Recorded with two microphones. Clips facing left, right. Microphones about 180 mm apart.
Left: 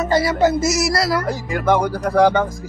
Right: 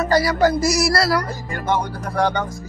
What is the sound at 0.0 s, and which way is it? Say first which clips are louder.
Speech: left 1 dB; 25° left (ahead or behind).